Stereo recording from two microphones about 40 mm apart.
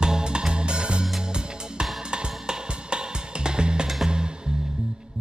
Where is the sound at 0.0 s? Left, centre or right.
Centre.